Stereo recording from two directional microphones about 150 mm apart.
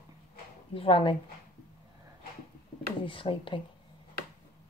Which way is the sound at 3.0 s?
35° left (ahead or behind).